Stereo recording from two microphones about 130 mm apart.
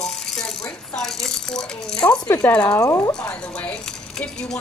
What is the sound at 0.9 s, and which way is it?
Rattle, 5° left (ahead or behind).